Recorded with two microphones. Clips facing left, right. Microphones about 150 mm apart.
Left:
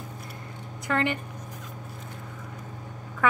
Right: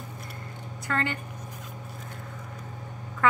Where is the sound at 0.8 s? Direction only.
15° left (ahead or behind).